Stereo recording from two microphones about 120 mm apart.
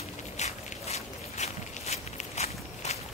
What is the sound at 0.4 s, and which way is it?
Walk, 65° left (ahead or behind).